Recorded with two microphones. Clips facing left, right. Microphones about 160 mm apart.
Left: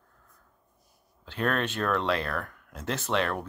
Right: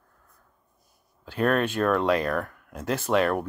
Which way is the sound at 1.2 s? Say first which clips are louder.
Right 5 dB; 10° right (ahead or behind).